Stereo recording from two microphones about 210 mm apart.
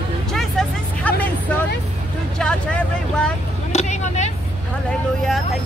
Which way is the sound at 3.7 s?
35° left (ahead or behind).